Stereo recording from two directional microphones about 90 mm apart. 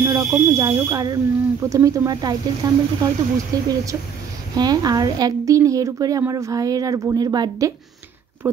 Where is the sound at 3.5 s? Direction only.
45° right (ahead or behind).